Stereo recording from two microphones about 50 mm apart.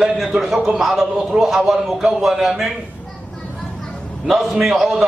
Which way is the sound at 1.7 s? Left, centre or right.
Centre.